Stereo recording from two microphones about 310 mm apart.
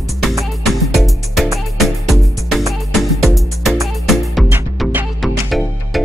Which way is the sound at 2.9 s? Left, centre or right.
Centre.